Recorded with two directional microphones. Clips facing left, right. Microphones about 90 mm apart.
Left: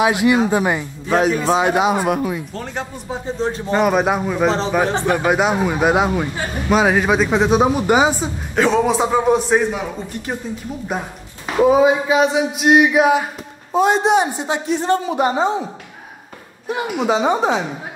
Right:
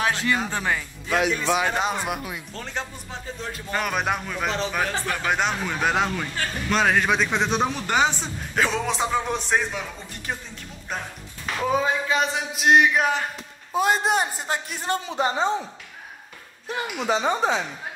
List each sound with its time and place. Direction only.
0.0 s speech: 15° left (ahead or behind)
1.0 s a man's voice: 40° left (ahead or behind)
1.8 s speech: 10° left (ahead or behind)
2.1 s a man's voice: 30° left (ahead or behind)
3.8 s a sound: 5° left (ahead or behind)
4.2 s speech: 15° left (ahead or behind)
4.5 s a man's voice: 35° left (ahead or behind)
5.3 s speech: 10° left (ahead or behind)
12.2 s a sound: 5° left (ahead or behind)
15.2 s a woman's voice: 45° left (ahead or behind)
17.3 s a man's voice: 40° left (ahead or behind)